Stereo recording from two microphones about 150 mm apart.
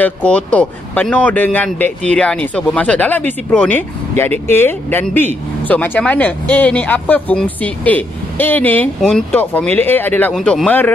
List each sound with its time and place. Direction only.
0.0 s a man's voice: 10° left (ahead or behind)